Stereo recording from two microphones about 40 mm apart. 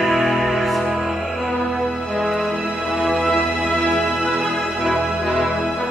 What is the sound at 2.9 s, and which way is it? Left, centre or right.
Music, centre.